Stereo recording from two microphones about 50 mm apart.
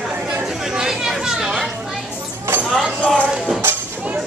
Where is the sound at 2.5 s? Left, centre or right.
Right.